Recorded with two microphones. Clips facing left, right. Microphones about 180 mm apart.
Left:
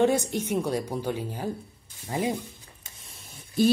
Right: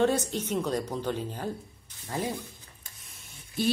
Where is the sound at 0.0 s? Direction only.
15° left (ahead or behind).